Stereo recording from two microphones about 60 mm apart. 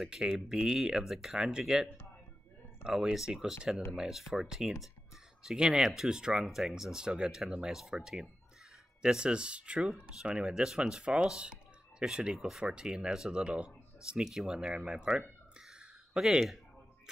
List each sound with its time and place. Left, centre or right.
0.0 s speech: centre